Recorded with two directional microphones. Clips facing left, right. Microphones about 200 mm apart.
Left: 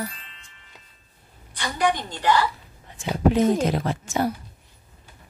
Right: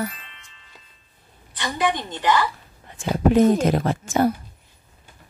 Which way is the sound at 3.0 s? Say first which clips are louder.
Right 3 dB; 50° right (ahead or behind).